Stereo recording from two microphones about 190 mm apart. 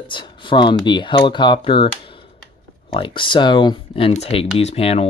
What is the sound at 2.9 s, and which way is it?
Speech, 25° left (ahead or behind).